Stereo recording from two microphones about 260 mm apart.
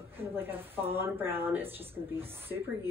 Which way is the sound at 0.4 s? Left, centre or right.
Centre.